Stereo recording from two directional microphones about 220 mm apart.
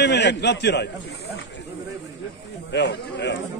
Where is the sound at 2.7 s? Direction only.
50° left (ahead or behind).